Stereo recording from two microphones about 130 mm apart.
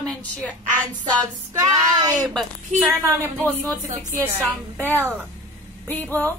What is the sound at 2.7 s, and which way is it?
Speech, 60° right (ahead or behind).